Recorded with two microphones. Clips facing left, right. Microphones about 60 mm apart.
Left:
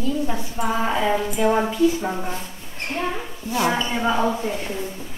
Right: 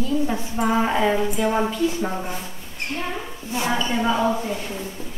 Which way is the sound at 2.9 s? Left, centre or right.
Left.